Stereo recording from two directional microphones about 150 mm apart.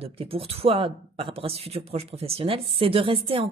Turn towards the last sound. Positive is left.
turn(degrees=-40)  # may be behind; listen again after turning